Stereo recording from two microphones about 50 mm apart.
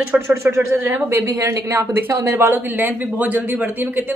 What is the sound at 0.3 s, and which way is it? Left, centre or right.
Speech, right.